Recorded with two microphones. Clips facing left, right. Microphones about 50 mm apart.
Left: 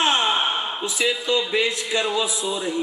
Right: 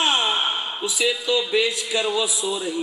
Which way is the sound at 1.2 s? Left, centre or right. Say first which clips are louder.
Right 1 dB; left.